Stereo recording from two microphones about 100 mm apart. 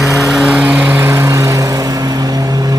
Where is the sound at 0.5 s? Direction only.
15° right (ahead or behind); by 1.8 s 35° right (ahead or behind).